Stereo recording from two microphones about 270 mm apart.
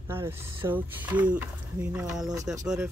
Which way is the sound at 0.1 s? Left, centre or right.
Centre.